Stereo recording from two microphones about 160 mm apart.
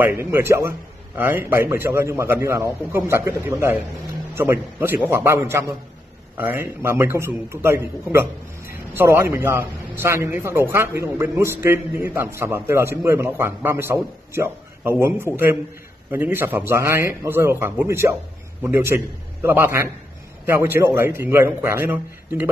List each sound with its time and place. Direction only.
0.0 s a man's voice: 15° right (ahead or behind)